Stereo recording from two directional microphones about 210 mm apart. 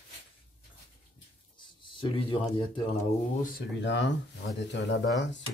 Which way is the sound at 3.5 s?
55° left (ahead or behind).